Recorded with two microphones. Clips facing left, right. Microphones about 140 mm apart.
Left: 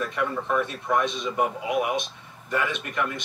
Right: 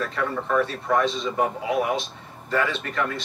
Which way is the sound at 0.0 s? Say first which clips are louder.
Right 1 dB; 15° left (ahead or behind).